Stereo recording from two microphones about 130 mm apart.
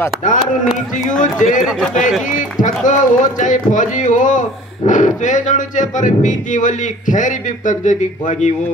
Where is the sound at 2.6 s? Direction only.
80° left.